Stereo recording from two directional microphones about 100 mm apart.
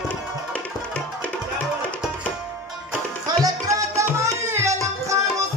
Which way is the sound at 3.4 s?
35° right (ahead or behind).